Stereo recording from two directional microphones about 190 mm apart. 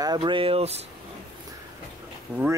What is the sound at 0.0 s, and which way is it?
Speech, 25° right (ahead or behind).